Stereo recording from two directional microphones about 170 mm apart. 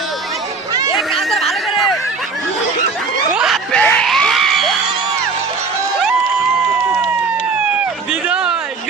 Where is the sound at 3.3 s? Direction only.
Centre (ahead or behind).